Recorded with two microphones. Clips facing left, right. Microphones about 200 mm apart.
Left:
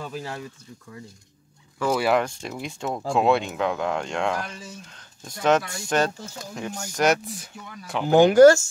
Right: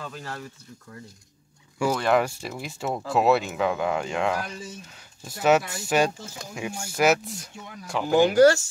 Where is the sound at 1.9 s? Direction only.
Centre (ahead or behind).